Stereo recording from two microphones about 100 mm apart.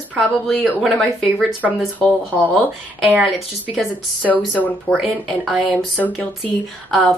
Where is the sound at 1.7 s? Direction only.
15° left (ahead or behind).